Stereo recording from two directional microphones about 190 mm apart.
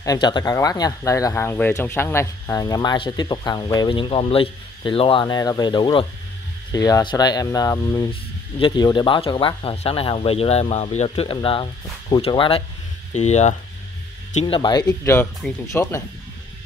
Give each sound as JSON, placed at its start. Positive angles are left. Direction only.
{"t": 0.0, "sound": "speech", "side_deg": 20}
{"t": 14.4, "sound": "speech", "side_deg": 25}